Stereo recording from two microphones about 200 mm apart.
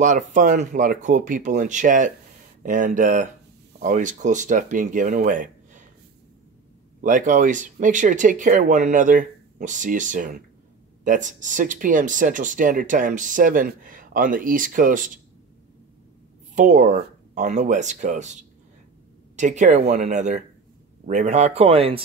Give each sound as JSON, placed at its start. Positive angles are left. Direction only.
{"t": 0.0, "sound": "speech", "side_deg": -40}
{"t": 7.0, "sound": "speech", "side_deg": -40}
{"t": 16.5, "sound": "speech", "side_deg": -40}